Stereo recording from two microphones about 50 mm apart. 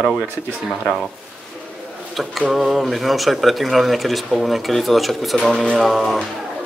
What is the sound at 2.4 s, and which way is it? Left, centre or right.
Speech, centre.